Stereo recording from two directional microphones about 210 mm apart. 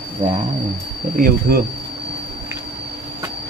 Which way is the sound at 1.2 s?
45° right (ahead or behind).